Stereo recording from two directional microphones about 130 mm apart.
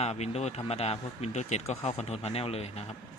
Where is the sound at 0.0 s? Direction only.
55° left (ahead or behind).